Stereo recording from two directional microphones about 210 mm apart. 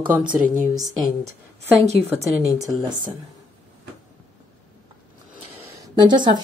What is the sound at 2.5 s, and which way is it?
Speech, 15° right (ahead or behind).